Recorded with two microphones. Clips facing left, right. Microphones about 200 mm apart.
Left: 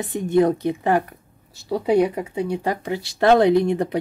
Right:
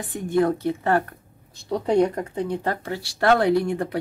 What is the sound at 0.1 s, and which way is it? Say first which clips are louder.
Speech: left 3 dB; 20° left (ahead or behind).